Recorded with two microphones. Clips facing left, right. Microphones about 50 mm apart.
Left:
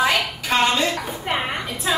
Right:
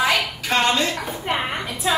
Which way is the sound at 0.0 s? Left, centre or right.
Centre.